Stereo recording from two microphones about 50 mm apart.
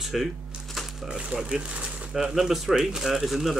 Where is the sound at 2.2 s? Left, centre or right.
Centre.